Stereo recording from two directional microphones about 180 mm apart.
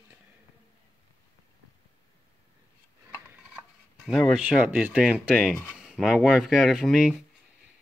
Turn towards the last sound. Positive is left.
turn(degrees=0)  # may be behind; listen again after turning